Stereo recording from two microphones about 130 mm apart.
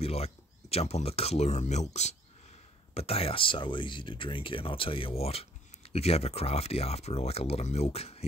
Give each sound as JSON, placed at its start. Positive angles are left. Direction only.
{"t": 0.0, "sound": "speech", "side_deg": 50}